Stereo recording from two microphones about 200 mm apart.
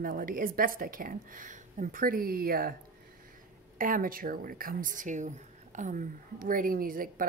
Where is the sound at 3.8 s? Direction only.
45° right (ahead or behind).